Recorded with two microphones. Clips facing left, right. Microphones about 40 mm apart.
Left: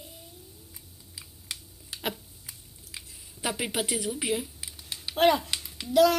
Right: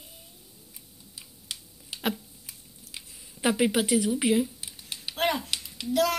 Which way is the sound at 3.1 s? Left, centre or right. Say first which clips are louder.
Right 6 dB; right.